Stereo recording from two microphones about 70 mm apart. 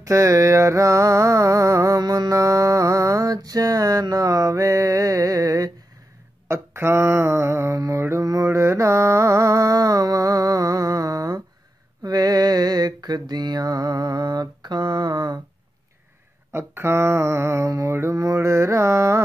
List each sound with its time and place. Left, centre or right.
0.0 s mantra: right
2.0 s mantra: right
6.4 s mantra: right
16.5 s mantra: right